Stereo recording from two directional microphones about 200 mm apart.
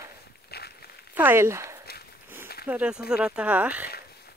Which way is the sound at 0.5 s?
50° left (ahead or behind).